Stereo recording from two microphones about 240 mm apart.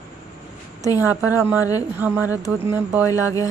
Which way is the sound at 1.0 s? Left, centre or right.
Centre.